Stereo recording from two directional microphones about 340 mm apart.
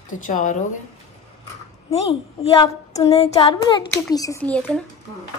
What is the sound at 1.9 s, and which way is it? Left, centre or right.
Child singing, centre.